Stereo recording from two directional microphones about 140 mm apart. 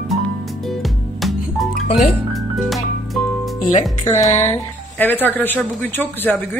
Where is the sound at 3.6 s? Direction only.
55° left (ahead or behind).